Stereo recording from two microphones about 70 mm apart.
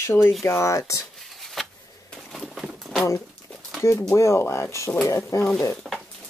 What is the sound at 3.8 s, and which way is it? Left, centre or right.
Speech, left.